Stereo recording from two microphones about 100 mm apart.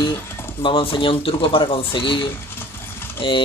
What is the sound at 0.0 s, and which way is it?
Speech, 50° left (ahead or behind).